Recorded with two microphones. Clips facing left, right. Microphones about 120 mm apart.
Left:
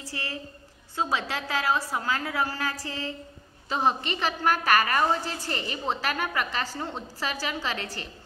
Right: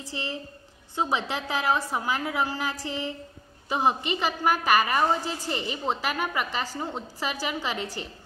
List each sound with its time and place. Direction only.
0.0 s a woman's voice: 20° right (ahead or behind)